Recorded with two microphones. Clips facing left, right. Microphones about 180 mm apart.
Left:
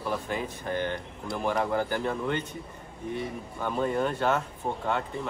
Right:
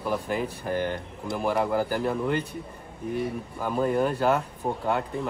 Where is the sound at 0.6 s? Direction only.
5° right (ahead or behind).